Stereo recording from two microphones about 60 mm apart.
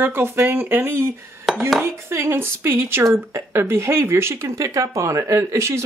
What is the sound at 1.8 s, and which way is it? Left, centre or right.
Speech, right.